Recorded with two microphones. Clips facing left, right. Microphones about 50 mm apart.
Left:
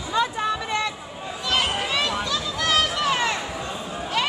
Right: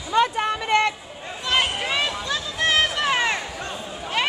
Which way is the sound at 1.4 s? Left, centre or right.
Centre.